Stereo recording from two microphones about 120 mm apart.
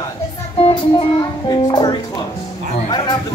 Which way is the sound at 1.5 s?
35° left (ahead or behind).